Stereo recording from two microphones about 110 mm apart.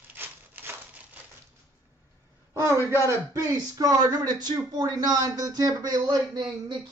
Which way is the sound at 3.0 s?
25° right (ahead or behind).